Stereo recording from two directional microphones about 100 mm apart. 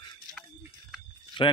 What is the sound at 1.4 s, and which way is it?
Speech, 55° left (ahead or behind).